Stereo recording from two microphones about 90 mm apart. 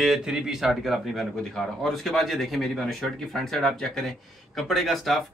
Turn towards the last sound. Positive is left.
turn(degrees=0)  # may be behind; listen again after turning